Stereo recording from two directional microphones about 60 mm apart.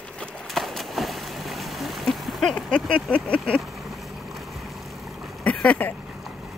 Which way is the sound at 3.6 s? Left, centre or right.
Centre.